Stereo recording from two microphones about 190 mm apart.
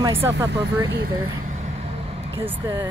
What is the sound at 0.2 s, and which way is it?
Speech, 15° right (ahead or behind).